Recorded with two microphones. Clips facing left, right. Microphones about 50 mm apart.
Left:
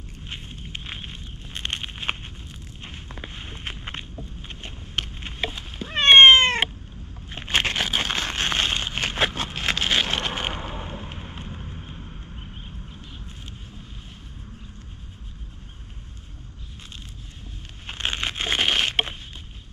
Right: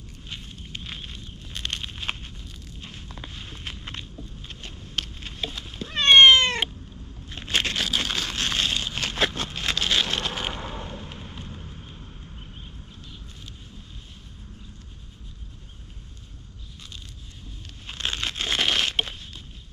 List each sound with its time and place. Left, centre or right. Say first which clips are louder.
0.3 s a sound: left 2 dB; left
2.8 s walk: left 2 dB; left
5.5 s cat: left 2 dB; centre
7.2 s a sound: left 2 dB; left
10.6 s vehicle: left 1 dB; centre
17.8 s crumpling: left 2 dB; left